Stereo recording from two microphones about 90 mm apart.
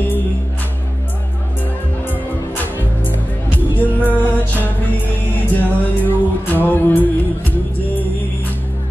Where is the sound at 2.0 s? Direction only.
20° left (ahead or behind).